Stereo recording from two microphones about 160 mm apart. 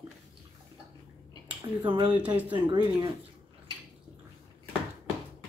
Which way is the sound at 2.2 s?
10° right (ahead or behind).